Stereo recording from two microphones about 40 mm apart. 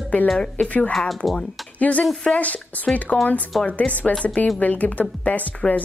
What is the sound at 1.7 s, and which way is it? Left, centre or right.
Speech, left.